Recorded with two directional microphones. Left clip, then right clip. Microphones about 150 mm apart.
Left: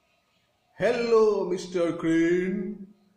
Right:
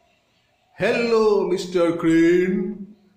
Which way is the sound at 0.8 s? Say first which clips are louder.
Right 3 dB; 30° left (ahead or behind).